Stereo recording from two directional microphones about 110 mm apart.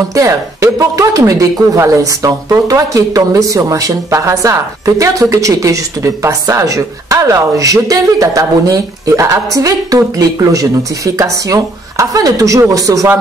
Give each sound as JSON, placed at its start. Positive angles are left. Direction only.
{"t": 0.1, "sound": "speech", "side_deg": -30}